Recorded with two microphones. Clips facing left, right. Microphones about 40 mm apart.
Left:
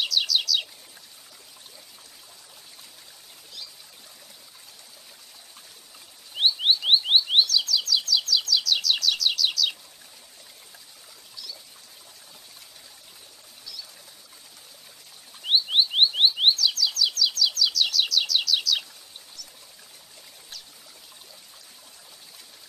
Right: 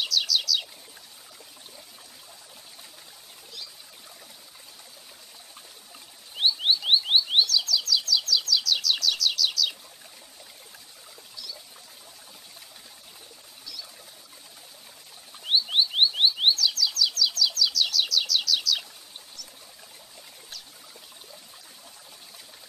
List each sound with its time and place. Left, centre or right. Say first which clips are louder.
0.0 s bird: left 1 dB; centre
6.3 s rodents: left 2 dB; centre
7.4 s bird: left 1 dB; centre
15.4 s rodents: left 2 dB; centre
16.5 s chirp: left 1 dB; centre
17.1 s bird: left 1 dB; centre